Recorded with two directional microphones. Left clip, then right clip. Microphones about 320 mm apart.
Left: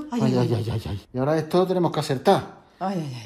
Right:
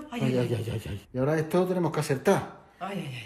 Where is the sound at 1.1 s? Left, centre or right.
Centre.